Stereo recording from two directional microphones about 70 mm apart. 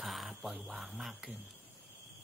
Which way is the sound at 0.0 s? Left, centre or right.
Centre.